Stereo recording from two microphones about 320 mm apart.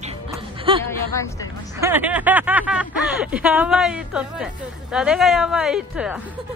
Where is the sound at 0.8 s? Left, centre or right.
Centre.